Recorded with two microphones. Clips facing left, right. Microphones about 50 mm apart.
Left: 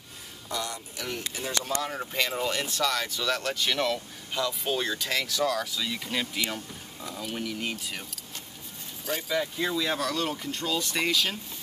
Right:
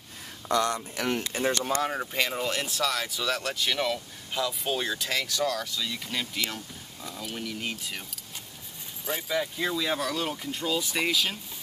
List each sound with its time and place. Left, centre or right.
0.5 s speech: right
1.6 s speech: right
1.9 s speech: centre
9.0 s speech: centre